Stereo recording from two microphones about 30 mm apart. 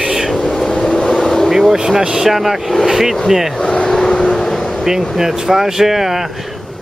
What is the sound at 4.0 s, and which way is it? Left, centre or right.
Vehicle, left.